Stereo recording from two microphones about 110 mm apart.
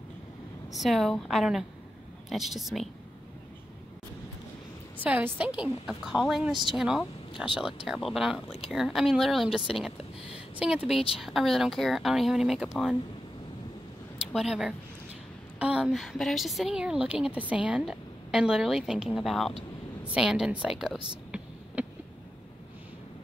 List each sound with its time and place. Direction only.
0.7 s a woman's voice: centre (ahead or behind)
5.0 s a woman's voice: 15° right (ahead or behind)
8.5 s speech: 65° left (ahead or behind)
8.7 s a woman's voice: centre (ahead or behind)
14.3 s a woman's voice: 5° right (ahead or behind)